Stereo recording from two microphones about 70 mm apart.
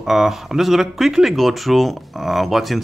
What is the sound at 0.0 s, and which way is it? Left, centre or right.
Speech, centre.